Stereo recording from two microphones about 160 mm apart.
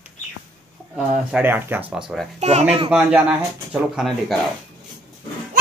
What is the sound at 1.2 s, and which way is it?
Speech, 10° right (ahead or behind).